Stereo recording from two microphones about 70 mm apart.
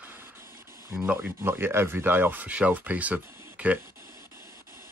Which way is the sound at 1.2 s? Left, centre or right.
Right.